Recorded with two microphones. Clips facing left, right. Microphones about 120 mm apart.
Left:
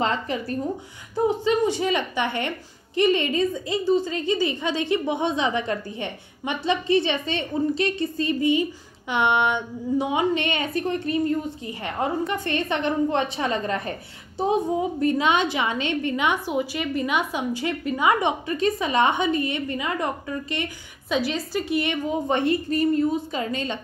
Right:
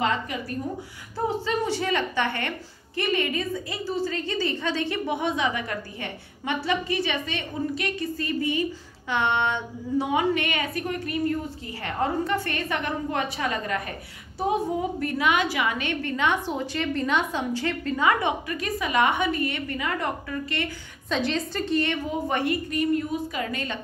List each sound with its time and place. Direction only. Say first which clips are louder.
0.0 s speech: left 2 dB; 30° left (ahead or behind)
1.1 s a woman's voice: left 5 dB; 20° left (ahead or behind)
18.5 s a woman's voice: left 4 dB; 25° left (ahead or behind)